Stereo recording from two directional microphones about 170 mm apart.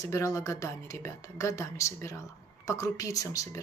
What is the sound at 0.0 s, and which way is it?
Speech, 20° left (ahead or behind).